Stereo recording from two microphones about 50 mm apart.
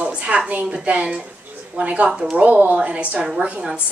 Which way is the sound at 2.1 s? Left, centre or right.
Centre.